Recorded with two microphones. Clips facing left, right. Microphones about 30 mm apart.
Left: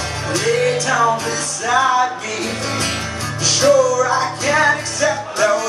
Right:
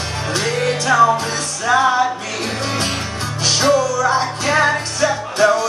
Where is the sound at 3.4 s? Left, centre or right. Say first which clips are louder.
Left 2 dB; right.